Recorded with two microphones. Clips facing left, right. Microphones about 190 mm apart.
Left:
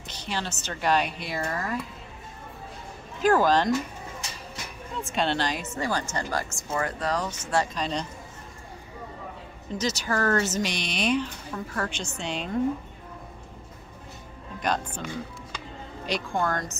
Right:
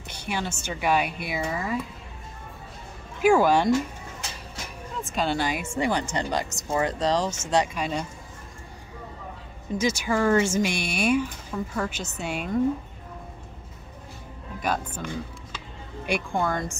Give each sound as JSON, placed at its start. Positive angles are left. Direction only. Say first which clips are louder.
{"t": 0.1, "sound": "a woman's voice", "louder": "right 2 dB", "side_deg": -10}
{"t": 3.2, "sound": "a woman's voice", "louder": "right 2 dB", "side_deg": -10}
{"t": 5.0, "sound": "a woman's voice", "louder": "right 1 dB", "side_deg": 0}
{"t": 7.5, "sound": "a woman's voice", "louder": "right 2 dB", "side_deg": -10}
{"t": 9.8, "sound": "a woman's voice", "louder": "right 3 dB", "side_deg": -10}
{"t": 14.6, "sound": "a woman's voice", "louder": "even", "side_deg": -5}
{"t": 16.1, "sound": "a woman's voice", "louder": "right 1 dB", "side_deg": -10}